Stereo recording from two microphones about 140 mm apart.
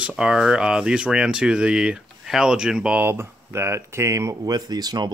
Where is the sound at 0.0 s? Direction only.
5° right (ahead or behind).